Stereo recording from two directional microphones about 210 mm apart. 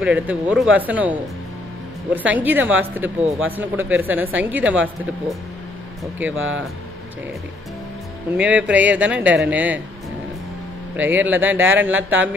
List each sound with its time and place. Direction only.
0.0 s speech: 5° right (ahead or behind)
2.1 s speech: 10° right (ahead or behind)
6.3 s speech: 70° right (ahead or behind)
8.4 s speech: 5° right (ahead or behind)
11.0 s speech: 10° right (ahead or behind)